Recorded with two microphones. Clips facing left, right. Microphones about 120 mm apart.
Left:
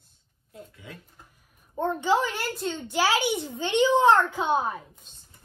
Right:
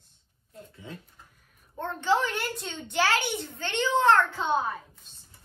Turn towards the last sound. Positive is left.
turn(degrees=15)  # may be behind; listen again after turning